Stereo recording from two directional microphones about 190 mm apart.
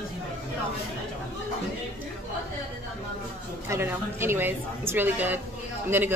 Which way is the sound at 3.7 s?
15° right (ahead or behind).